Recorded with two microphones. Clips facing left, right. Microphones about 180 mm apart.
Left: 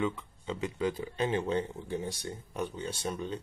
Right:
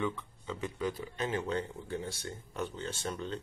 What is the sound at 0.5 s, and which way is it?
Speech, 25° left (ahead or behind).